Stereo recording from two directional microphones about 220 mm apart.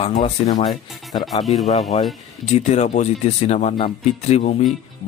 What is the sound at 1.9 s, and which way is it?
Speech, 30° left (ahead or behind).